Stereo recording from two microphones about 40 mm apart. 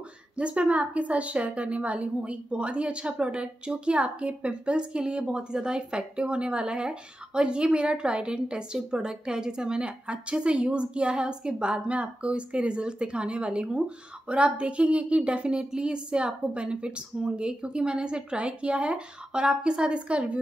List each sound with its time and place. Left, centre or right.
0.4 s a woman's voice: right
15.5 s a woman's voice: centre